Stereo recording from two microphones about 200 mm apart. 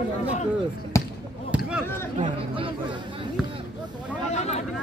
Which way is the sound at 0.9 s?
15° left (ahead or behind).